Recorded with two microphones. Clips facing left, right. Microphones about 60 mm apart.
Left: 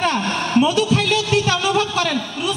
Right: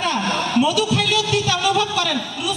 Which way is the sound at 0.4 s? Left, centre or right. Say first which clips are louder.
Left 3 dB; left.